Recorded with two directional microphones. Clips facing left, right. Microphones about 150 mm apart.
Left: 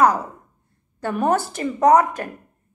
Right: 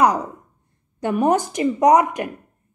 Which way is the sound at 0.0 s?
15° right (ahead or behind).